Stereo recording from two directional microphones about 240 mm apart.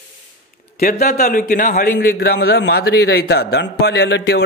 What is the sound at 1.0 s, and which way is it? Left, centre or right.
A man's voice, left.